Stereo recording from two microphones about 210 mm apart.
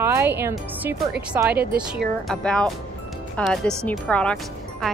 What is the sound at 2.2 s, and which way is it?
Speech, 5° left (ahead or behind).